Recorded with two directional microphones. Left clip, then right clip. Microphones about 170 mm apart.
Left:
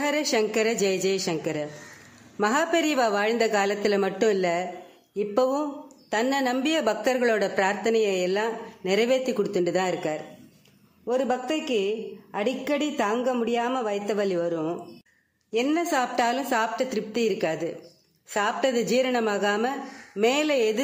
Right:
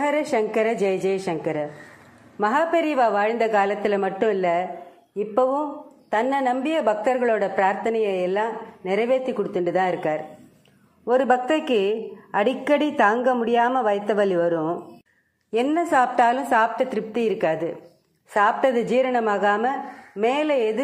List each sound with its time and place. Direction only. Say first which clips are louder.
0.0 s a sound: right 3 dB; 15° left (ahead or behind)
0.5 s a woman's voice: right 3 dB; 20° left (ahead or behind); by 14.6 s 5° left (ahead or behind)
15.7 s a woman's voice: right 7 dB; 10° left (ahead or behind)